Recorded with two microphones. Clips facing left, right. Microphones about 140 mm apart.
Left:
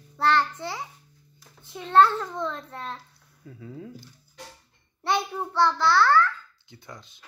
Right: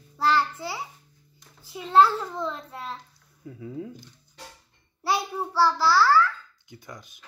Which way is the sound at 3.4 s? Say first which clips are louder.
Right 4 dB; 20° right (ahead or behind).